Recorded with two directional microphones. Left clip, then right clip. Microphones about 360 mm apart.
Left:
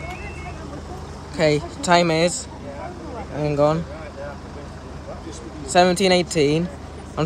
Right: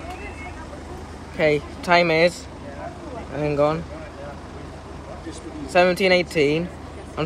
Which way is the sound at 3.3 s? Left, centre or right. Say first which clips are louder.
Left 1 dB; centre.